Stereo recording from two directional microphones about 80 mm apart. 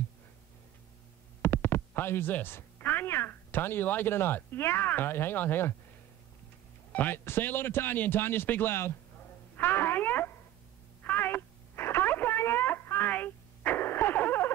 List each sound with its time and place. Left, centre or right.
1.4 s speech: left
6.9 s a man's voice: left
9.6 s a sound: left
11.1 s telephone: left